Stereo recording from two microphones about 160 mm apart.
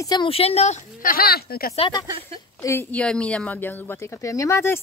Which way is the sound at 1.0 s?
70° left (ahead or behind).